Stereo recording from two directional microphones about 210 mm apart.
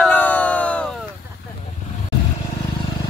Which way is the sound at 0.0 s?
5° left (ahead or behind).